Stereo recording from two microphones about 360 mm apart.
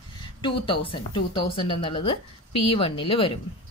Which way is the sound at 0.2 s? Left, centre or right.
Centre.